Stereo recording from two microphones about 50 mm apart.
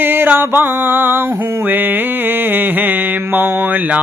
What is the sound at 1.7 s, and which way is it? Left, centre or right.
Mantra, right.